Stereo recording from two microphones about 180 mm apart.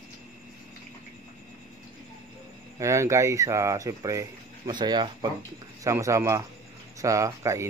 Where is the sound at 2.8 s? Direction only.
15° right (ahead or behind).